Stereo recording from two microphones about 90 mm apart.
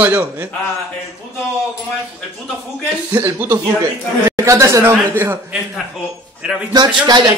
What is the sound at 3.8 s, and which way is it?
Speech, 40° right (ahead or behind).